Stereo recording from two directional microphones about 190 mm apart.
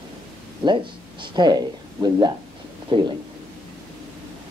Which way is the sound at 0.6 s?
25° right (ahead or behind).